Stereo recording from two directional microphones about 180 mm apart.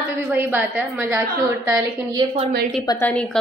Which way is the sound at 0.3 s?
10° right (ahead or behind).